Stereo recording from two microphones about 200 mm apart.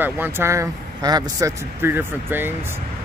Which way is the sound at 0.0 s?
10° right (ahead or behind).